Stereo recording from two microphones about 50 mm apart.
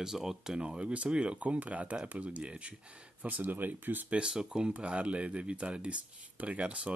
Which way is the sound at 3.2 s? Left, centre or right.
Right.